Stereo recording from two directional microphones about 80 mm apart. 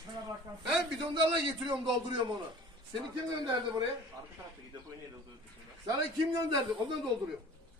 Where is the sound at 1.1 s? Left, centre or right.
Right.